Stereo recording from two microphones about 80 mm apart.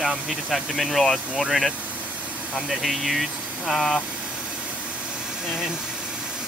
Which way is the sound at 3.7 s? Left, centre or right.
Centre.